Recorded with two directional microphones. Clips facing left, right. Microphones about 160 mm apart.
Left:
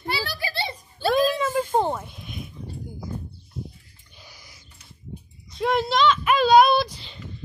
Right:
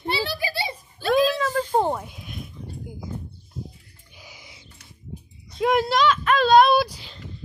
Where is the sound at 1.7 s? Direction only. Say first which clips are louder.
Right 1 dB; 5° right (ahead or behind).